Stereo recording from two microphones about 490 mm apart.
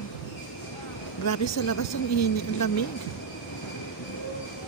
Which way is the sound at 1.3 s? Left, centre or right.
Left.